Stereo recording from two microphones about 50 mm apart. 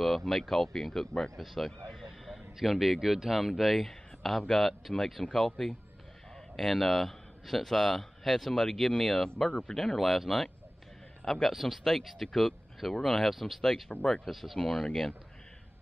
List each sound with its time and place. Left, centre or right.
0.0 s speech: centre
13.9 s speech: centre
14.2 s speech: centre